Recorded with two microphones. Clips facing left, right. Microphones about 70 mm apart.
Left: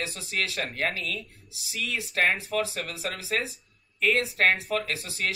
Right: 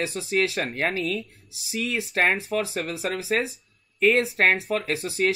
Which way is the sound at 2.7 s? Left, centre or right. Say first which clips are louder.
Right 6 dB; right.